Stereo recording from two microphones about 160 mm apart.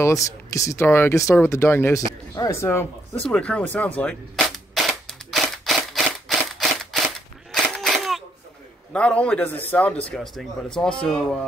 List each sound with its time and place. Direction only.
0.0 s speech: 20° left (ahead or behind)
3.3 s cap gun: 5° left (ahead or behind)
8.9 s speech: 5° left (ahead or behind)